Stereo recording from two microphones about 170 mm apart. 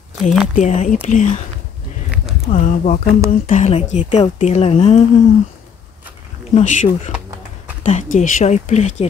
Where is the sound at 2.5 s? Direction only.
50° left (ahead or behind).